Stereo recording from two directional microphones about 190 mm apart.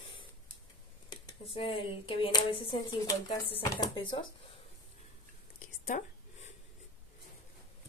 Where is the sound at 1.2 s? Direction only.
30° left (ahead or behind).